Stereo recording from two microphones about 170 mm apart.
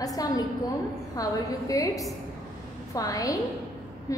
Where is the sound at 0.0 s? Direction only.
20° left (ahead or behind).